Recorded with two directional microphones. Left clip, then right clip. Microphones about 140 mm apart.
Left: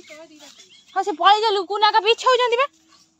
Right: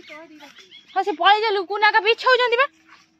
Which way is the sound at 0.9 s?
10° left (ahead or behind).